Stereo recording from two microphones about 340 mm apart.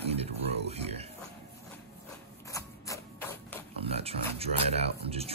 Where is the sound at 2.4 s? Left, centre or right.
Centre.